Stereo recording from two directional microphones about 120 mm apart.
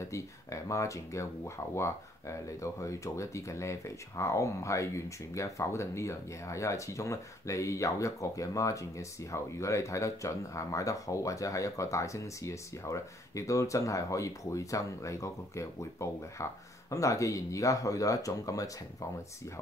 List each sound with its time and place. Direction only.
0.1 s speech: 25° left (ahead or behind)